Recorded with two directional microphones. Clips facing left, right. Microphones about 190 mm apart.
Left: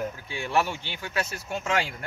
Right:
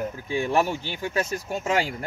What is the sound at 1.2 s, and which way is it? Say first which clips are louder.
Speech: right 4 dB; 40° right (ahead or behind).